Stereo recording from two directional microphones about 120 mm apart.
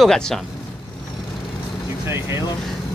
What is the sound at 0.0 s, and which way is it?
Speech, 5° left (ahead or behind).